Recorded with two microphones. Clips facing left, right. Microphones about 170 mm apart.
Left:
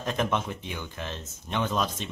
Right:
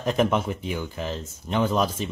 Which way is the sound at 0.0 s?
10° right (ahead or behind).